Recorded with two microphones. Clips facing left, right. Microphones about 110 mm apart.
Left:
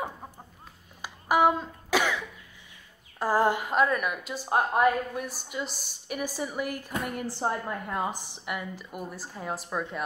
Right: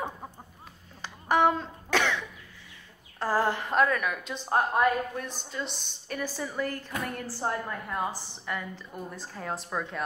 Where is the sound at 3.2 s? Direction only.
15° left (ahead or behind).